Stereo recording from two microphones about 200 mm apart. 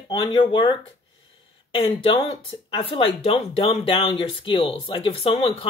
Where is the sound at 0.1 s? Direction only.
25° left (ahead or behind).